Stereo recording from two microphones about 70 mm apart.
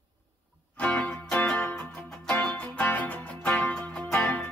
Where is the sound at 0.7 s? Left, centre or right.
Centre.